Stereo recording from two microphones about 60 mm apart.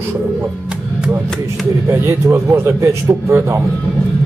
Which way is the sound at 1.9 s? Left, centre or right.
Right.